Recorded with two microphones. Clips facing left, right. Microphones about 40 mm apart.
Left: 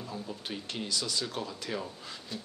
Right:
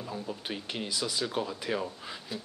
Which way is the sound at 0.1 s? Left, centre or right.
Centre.